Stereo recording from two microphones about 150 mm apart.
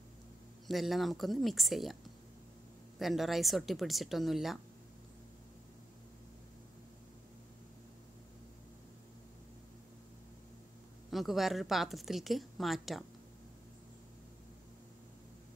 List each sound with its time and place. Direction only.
0.7 s a woman's voice: centre (ahead or behind)
11.1 s a woman's voice: centre (ahead or behind)